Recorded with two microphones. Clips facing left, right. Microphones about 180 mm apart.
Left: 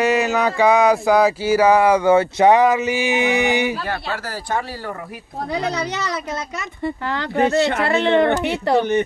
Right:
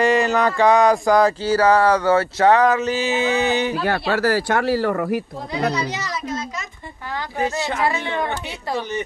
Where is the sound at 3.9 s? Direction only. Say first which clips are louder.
Right 7 dB; 75° right (ahead or behind).